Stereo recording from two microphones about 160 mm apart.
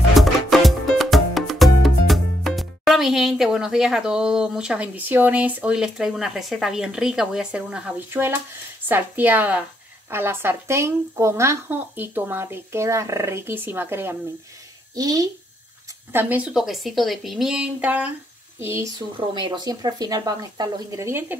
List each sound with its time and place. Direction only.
0.1 s music: centre (ahead or behind)
8.8 s a woman's voice: 10° right (ahead or behind)
16.1 s a woman's voice: 10° right (ahead or behind)
18.9 s speech: 30° right (ahead or behind); by 21.4 s 15° right (ahead or behind)